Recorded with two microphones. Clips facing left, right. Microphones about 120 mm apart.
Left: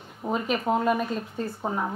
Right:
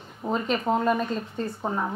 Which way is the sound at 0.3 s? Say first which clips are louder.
Even; 5° left (ahead or behind).